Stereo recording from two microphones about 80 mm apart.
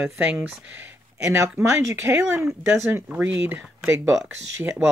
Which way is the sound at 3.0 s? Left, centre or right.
Centre.